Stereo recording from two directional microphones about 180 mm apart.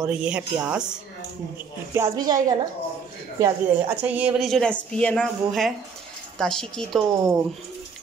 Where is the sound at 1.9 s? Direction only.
20° right (ahead or behind).